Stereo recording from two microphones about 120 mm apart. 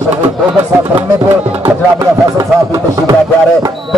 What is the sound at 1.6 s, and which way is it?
Speech, 30° right (ahead or behind).